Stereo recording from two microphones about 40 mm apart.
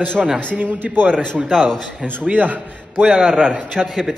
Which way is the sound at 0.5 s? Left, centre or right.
Right.